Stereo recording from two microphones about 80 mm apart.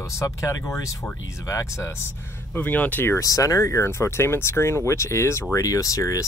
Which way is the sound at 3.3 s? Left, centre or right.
Left.